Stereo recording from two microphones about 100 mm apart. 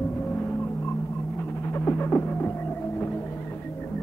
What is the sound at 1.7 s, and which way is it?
Throbbing, 20° left (ahead or behind).